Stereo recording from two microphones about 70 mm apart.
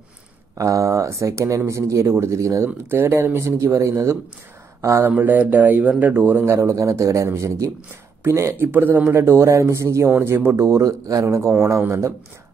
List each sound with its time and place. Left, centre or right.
0.6 s speech: right
2.6 s speech: right
5.0 s speech: right
6.5 s speech: right
10.0 s speech: right
10.5 s speech: right
11.2 s speech: right